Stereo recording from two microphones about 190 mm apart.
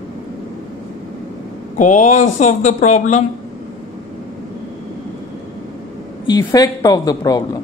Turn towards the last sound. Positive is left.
turn(degrees=20)  # may be behind; listen again after turning